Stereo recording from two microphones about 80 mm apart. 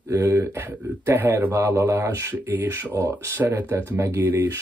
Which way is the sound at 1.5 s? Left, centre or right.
Right.